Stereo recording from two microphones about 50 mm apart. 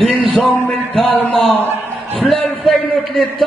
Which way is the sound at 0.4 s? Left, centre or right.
Left.